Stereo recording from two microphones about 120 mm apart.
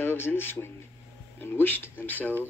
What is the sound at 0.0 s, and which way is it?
Speech, 20° left (ahead or behind).